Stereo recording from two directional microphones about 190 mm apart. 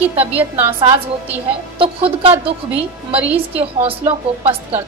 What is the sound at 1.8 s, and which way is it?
Speech, 30° right (ahead or behind).